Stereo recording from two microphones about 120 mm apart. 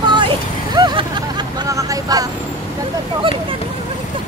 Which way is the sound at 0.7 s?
35° right (ahead or behind).